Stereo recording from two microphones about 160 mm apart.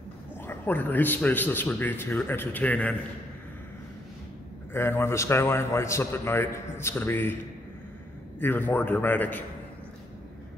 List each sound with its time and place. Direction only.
0.5 s a man's voice: 15° left (ahead or behind)
4.7 s a man's voice: 15° left (ahead or behind)
8.4 s a man's voice: 10° left (ahead or behind)